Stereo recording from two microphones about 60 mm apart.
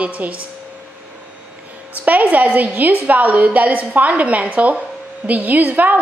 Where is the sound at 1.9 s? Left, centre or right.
Right.